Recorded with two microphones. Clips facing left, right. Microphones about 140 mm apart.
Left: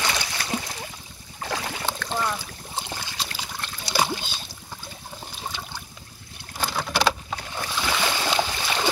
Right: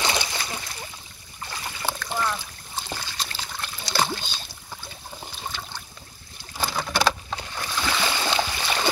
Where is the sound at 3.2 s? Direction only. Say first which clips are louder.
Even; 5° left (ahead or behind).